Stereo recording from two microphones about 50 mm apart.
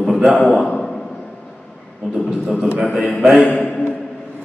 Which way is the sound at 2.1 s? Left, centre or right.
Centre.